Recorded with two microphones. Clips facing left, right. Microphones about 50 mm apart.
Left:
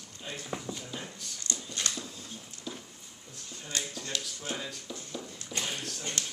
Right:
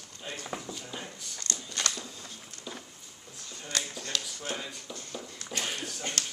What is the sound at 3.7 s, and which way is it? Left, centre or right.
Speech, right.